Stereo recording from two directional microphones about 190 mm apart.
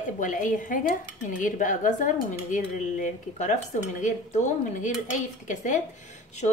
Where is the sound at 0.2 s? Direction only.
45° left (ahead or behind).